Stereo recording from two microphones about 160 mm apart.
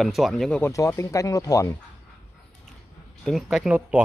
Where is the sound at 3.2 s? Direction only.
Centre (ahead or behind).